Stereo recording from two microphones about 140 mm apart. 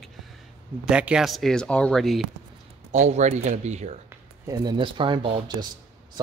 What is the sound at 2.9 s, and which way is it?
Speech, 55° right (ahead or behind).